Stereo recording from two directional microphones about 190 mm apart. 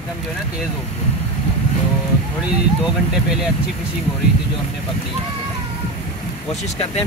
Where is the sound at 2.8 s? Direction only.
5° right (ahead or behind).